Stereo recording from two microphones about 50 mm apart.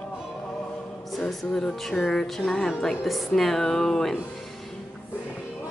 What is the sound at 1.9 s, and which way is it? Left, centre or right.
Music, centre.